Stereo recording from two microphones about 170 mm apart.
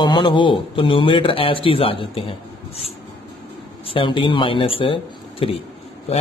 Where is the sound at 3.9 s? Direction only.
30° left (ahead or behind).